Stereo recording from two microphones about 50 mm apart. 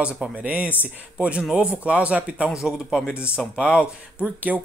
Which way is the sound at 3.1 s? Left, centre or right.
Right.